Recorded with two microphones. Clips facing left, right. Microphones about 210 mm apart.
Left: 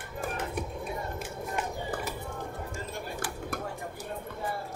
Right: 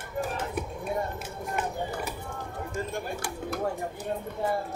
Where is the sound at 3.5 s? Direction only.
55° left (ahead or behind).